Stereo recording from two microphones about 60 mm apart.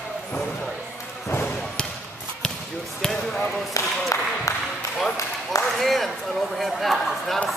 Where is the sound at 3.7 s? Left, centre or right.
Left.